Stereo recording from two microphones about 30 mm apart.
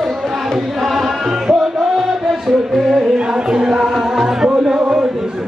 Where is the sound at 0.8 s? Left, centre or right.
Centre.